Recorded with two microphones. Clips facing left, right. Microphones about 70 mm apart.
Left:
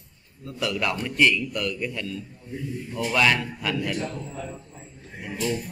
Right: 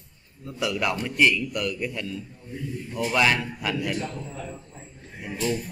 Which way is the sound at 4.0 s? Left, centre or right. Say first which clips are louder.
Left 1 dB; centre.